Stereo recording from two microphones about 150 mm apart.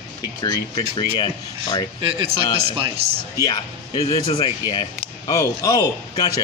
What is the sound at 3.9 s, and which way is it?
Speech, 35° left (ahead or behind).